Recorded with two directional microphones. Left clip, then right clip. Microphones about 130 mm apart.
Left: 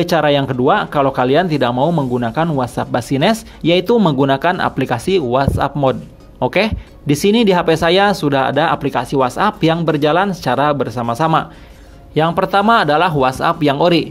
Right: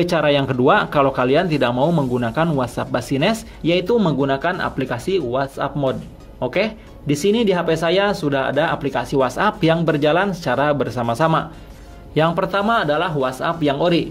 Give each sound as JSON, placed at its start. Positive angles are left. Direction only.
{"t": 0.0, "sound": "speech", "side_deg": 30}
{"t": 0.6, "sound": "speech", "side_deg": 15}
{"t": 12.4, "sound": "speech", "side_deg": 40}